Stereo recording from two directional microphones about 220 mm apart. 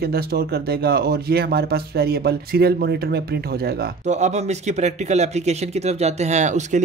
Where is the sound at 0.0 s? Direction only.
45° right (ahead or behind).